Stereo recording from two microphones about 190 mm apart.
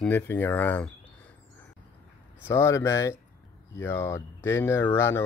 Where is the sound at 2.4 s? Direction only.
15° left (ahead or behind).